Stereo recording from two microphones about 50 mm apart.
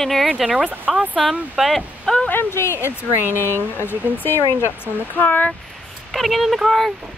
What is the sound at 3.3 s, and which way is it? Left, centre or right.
Speech, right.